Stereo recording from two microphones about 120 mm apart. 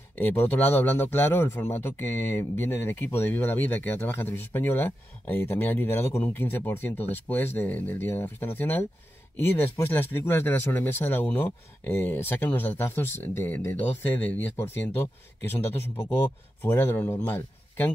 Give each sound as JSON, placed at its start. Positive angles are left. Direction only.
{"t": 0.1, "sound": "a man's voice", "side_deg": 15}
{"t": 16.6, "sound": "speech", "side_deg": 20}